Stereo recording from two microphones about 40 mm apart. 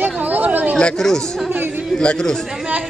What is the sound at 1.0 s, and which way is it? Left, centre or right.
Speech, centre.